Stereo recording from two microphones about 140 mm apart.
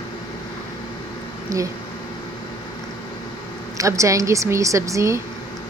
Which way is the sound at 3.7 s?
20° right (ahead or behind).